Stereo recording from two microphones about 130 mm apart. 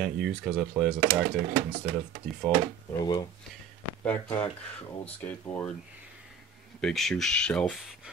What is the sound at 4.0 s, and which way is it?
Speech, 15° left (ahead or behind).